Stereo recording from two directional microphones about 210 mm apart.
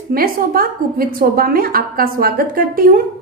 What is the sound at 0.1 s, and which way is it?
A woman's voice, 45° right (ahead or behind).